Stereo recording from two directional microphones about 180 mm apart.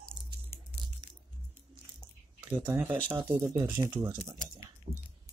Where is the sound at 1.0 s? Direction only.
25° right (ahead or behind).